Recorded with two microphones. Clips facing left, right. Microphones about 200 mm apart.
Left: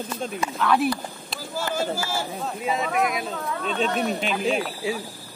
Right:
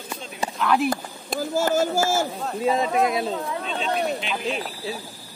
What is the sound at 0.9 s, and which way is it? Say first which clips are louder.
Speech: right 3 dB; 45° right (ahead or behind).